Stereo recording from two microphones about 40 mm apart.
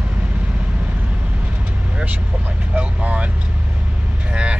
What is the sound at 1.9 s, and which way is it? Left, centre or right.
Vehicle, right.